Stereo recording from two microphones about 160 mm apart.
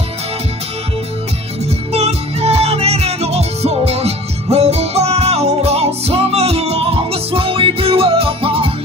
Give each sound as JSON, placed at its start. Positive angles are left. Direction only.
{"t": 1.9, "sound": "music", "side_deg": -40}